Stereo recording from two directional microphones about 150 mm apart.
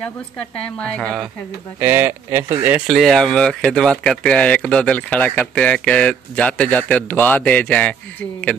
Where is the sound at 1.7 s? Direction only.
15° right (ahead or behind).